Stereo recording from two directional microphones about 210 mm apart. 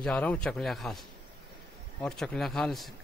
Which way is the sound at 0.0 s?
5° left (ahead or behind).